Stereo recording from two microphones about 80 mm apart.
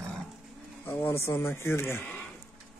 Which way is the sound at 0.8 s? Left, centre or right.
Left.